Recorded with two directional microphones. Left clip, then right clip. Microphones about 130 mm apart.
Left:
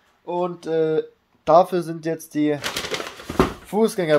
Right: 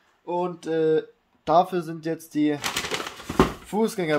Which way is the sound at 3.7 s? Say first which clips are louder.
Left 5 dB; 25° left (ahead or behind).